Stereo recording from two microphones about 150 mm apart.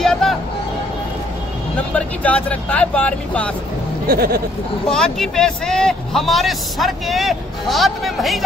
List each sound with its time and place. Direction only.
0.0 s music: centre (ahead or behind)
1.8 s speech: 10° left (ahead or behind)
4.1 s speech: 90° right
4.9 s a man's voice: 5° left (ahead or behind)